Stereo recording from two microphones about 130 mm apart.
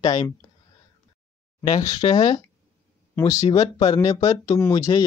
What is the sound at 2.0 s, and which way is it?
Speech, 45° left (ahead or behind).